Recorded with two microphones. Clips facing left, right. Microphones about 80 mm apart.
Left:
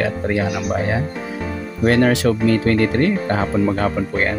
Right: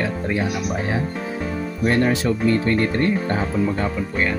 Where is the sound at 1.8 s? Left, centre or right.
Left.